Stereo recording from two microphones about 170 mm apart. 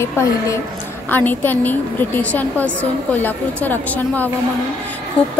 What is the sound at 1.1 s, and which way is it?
A woman's voice, 10° left (ahead or behind).